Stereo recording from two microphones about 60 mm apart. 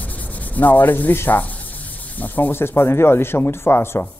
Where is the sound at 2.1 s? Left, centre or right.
Left.